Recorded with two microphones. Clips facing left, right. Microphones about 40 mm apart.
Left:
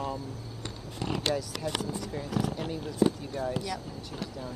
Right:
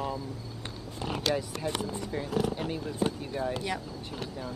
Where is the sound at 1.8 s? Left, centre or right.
Right.